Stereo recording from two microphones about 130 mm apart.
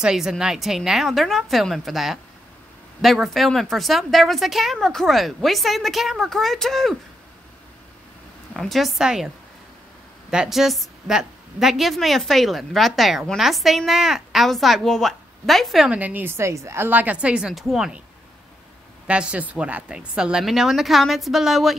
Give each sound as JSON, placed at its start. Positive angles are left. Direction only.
{"t": 0.0, "sound": "a woman's voice", "side_deg": -5}
{"t": 8.5, "sound": "a woman's voice", "side_deg": 0}
{"t": 10.3, "sound": "a woman's voice", "side_deg": -5}
{"t": 19.0, "sound": "a woman's voice", "side_deg": -10}